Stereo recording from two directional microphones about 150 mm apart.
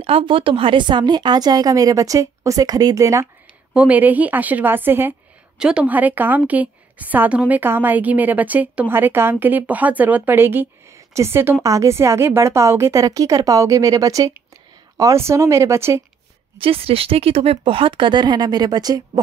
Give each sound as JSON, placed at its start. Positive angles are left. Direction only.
{"t": 0.0, "sound": "a woman's voice", "side_deg": -35}
{"t": 3.7, "sound": "a woman's voice", "side_deg": -10}
{"t": 16.5, "sound": "speech", "side_deg": -40}